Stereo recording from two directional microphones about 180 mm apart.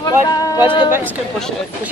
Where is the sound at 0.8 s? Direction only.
10° right (ahead or behind).